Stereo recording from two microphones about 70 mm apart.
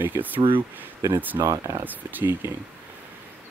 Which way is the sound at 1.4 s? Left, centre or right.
Right.